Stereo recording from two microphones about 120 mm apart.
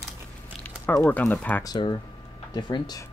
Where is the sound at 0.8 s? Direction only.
15° left (ahead or behind).